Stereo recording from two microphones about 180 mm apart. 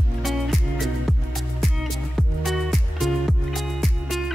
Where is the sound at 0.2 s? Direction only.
Centre (ahead or behind).